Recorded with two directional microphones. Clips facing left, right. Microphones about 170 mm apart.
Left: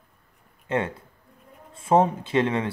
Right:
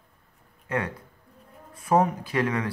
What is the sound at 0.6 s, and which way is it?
Speech, 25° left (ahead or behind).